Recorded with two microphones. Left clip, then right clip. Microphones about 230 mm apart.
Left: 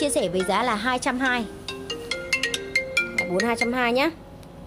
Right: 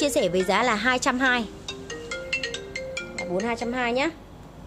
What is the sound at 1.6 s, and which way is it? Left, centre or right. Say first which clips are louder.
Music: left 3 dB; left.